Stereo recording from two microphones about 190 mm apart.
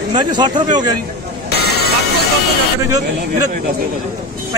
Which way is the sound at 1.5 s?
55° left (ahead or behind).